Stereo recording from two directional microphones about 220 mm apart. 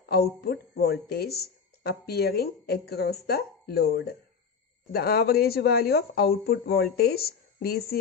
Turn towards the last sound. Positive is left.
turn(degrees=45)  # may be behind; listen again after turning